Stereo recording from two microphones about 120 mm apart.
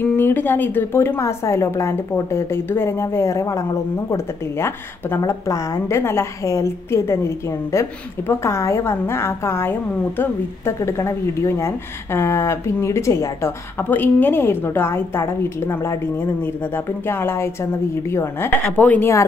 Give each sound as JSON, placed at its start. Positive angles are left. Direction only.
{"t": 0.0, "sound": "a woman's voice", "side_deg": 15}